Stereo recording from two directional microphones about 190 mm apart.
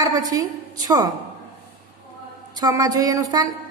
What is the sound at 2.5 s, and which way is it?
A woman's voice, 20° right (ahead or behind).